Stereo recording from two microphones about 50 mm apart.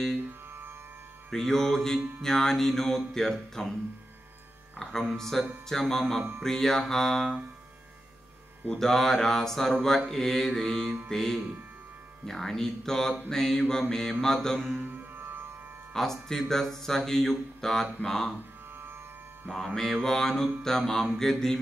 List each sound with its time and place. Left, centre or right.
0.5 s music: right
1.3 s mantra: centre
5.1 s mantra: centre
8.6 s mantra: centre
11.1 s speech: centre
12.3 s mantra: centre
15.1 s music: right
15.9 s mantra: centre
19.5 s mantra: centre